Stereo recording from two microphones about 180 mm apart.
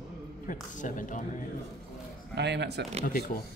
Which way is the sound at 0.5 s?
45° left (ahead or behind).